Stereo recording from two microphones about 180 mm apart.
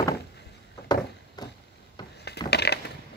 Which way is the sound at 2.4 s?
65° left (ahead or behind).